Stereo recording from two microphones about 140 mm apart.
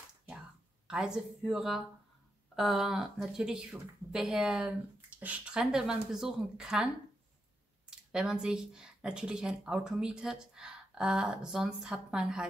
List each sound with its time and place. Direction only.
0.8 s speech: 5° right (ahead or behind)
8.1 s speech: 5° right (ahead or behind)